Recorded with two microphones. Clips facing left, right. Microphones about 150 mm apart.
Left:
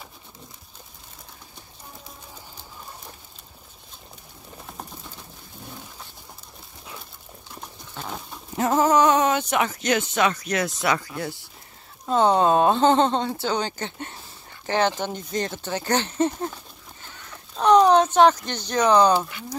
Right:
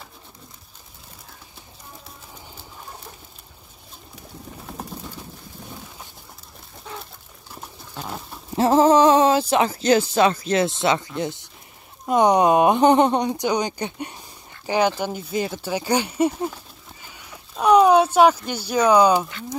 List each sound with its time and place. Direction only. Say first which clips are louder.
7.5 s dog: right 2 dB; 5° right (ahead or behind)
8.5 s speech: right 4 dB; 30° right (ahead or behind); by 16.5 s 10° right (ahead or behind)
17.0 s a sound: even; 10° right (ahead or behind)